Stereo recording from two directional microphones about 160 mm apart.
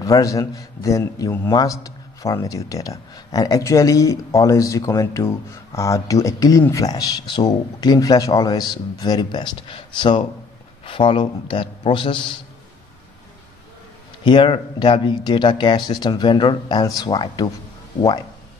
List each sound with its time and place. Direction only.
0.0 s a man's voice: 20° left (ahead or behind)
14.2 s a man's voice: 30° left (ahead or behind)